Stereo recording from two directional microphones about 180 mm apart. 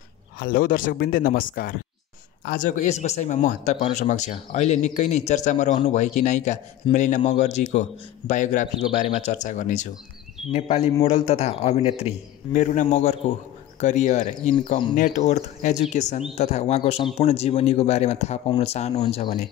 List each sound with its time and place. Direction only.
0.4 s speech: 50° left (ahead or behind); by 19.2 s 35° left (ahead or behind)